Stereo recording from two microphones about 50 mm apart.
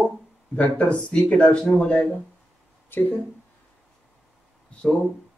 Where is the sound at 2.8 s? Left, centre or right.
Left.